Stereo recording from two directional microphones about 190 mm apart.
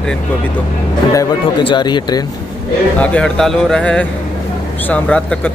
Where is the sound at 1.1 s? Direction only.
25° left (ahead or behind).